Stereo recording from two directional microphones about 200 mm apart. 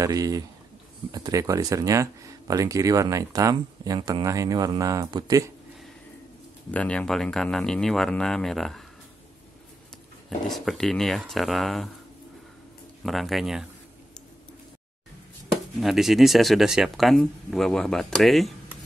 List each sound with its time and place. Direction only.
0.0 s speech: 15° right (ahead or behind)
6.7 s speech: 5° left (ahead or behind)
10.5 s speech: centre (ahead or behind)
13.0 s speech: centre (ahead or behind)
15.8 s speech: centre (ahead or behind)